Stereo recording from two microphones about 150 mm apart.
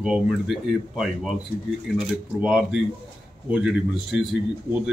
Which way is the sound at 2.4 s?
10° right (ahead or behind).